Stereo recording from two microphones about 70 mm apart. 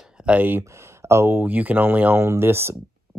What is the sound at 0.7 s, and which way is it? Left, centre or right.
Speech, right.